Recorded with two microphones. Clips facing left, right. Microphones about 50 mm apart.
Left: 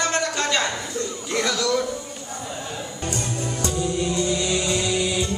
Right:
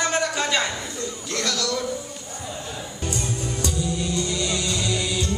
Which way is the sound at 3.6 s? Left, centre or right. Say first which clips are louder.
Left 4 dB; left.